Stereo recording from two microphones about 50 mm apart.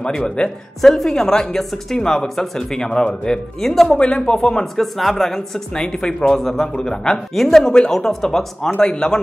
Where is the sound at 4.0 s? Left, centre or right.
Left.